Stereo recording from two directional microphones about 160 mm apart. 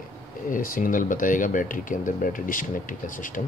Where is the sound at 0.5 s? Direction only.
60° left (ahead or behind).